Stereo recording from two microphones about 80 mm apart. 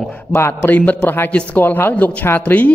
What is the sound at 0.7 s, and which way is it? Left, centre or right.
Speech, centre.